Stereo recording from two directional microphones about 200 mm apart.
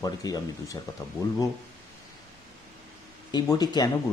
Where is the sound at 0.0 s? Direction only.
20° left (ahead or behind).